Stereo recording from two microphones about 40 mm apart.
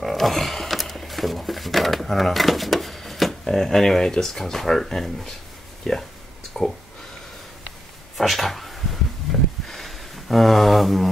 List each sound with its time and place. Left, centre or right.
0.0 s speech: centre
6.5 s speech: left
8.2 s speech: centre
9.3 s a sound: centre